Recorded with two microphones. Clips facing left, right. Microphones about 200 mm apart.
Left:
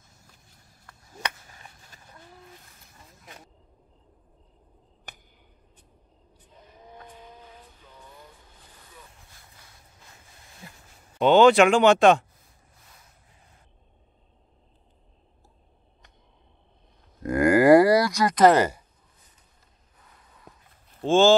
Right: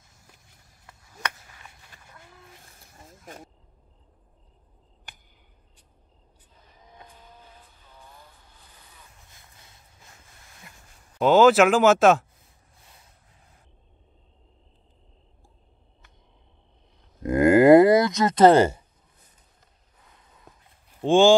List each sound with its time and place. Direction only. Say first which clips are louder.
1.2 s chop: even; 35° left (ahead or behind)
3.1 s vehicle: right 6 dB; 45° right (ahead or behind)
10.6 s a sound: left 5 dB; 30° left (ahead or behind)
11.1 s speech: even; centre (ahead or behind)
17.2 s a sound: right 3 dB; 20° right (ahead or behind)
21.0 s speech: right 2 dB; 15° right (ahead or behind)